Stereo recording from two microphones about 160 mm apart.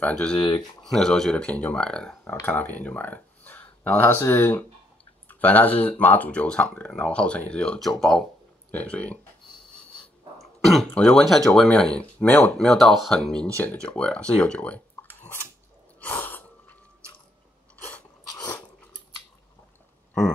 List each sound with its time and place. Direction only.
0.0 s speech: 5° left (ahead or behind)
0.4 s speech: 30° left (ahead or behind)
0.8 s speech: centre (ahead or behind)
9.6 s snort: 5° left (ahead or behind)
10.4 s speech: centre (ahead or behind)
16.0 s a sound: 10° left (ahead or behind)
18.4 s dog: 10° left (ahead or behind)